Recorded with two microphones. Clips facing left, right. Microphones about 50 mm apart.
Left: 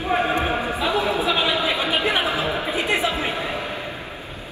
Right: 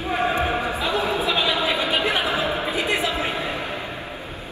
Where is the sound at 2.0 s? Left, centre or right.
Left.